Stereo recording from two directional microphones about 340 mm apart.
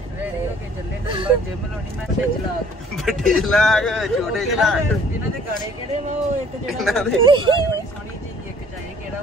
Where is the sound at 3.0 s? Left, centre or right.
Centre.